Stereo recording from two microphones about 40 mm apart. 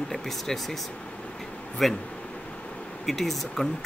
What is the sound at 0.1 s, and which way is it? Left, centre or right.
Speech, centre.